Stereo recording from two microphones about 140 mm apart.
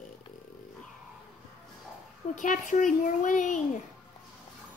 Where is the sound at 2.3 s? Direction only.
65° left (ahead or behind).